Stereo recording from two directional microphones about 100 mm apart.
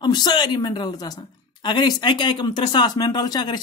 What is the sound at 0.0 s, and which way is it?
A woman's voice, 45° left (ahead or behind).